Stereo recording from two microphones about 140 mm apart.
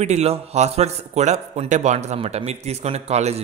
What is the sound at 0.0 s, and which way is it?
A man's voice, 50° right (ahead or behind).